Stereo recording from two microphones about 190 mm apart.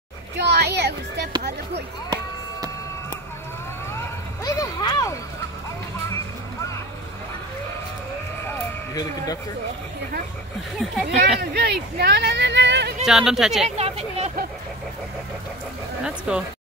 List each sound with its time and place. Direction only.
0.4 s music: 60° right (ahead or behind)
4.5 s a sound: 20° left (ahead or behind)
6.0 s music: 15° left (ahead or behind)
8.5 s a sound: 20° left (ahead or behind)
10.8 s speech: centre (ahead or behind)
11.5 s speech: 60° right (ahead or behind)
13.0 s speech: centre (ahead or behind)
13.7 s speech: 35° right (ahead or behind)
16.0 s speech: 5° right (ahead or behind)